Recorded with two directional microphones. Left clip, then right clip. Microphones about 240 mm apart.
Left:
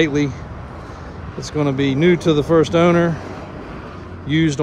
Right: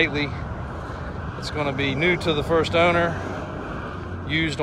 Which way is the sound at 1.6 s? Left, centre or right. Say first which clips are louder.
Left 5 dB; left.